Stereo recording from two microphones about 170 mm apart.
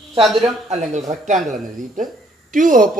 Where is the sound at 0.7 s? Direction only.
45° right (ahead or behind).